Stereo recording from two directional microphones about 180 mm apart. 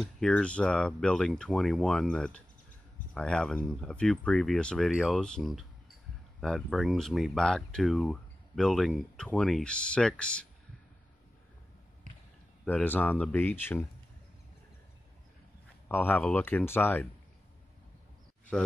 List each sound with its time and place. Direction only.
0.0 s speech: 5° left (ahead or behind)
12.6 s speech: 10° left (ahead or behind)
15.9 s speech: 10° left (ahead or behind)